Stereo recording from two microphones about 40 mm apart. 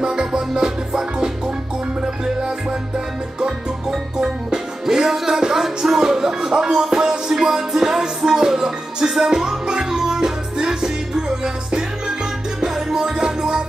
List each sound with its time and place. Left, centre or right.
0.0 s music: centre
3.3 s music: centre